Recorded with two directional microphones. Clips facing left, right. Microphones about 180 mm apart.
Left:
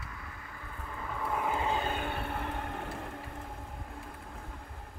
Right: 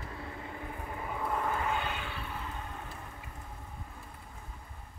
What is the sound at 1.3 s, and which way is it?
Vehicle, 10° left (ahead or behind).